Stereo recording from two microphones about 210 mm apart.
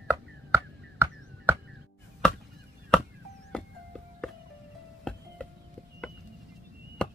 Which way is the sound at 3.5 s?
Centre (ahead or behind).